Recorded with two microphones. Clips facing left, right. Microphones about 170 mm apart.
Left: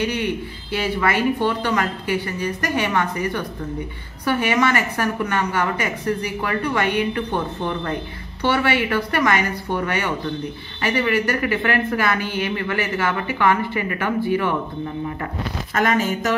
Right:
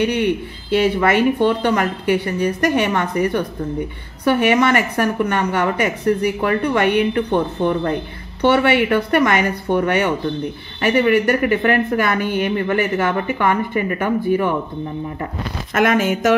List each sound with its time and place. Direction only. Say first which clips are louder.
0.0 s a woman's voice: right 5 dB; 60° right (ahead or behind)
4.4 s a woman's voice: right 4 dB; 60° right (ahead or behind); by 14.5 s 45° right (ahead or behind)
15.9 s speech: right 2 dB; 75° right (ahead or behind)